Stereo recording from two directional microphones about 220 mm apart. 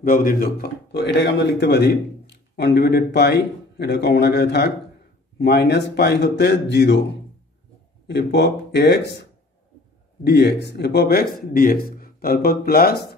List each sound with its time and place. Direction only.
0.0 s speech: 40° left (ahead or behind)
8.1 s speech: 50° left (ahead or behind)